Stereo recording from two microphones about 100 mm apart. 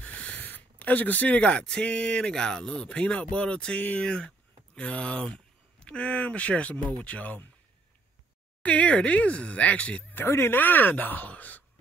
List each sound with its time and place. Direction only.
0.0 s speech: 15° left (ahead or behind)
8.6 s speech: 10° left (ahead or behind)
10.2 s speech: 25° left (ahead or behind)